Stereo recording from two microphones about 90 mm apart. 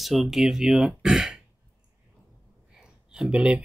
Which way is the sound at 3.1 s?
10° right (ahead or behind).